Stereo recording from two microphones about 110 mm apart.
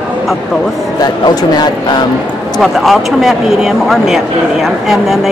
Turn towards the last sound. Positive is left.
turn(degrees=0)  # may be behind; listen again after turning